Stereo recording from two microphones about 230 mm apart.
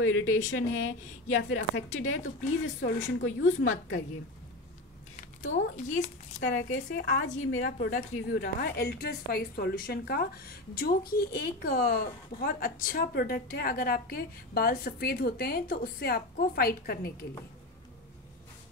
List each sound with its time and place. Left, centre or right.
0.0 s a woman's voice: left
5.1 s speech: left
6.4 s a woman's voice: left